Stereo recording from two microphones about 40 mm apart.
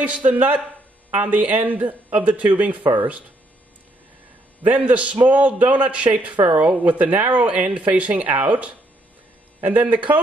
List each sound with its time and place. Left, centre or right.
0.0 s a woman's voice: right
4.6 s a man's voice: right
9.6 s a woman's voice: right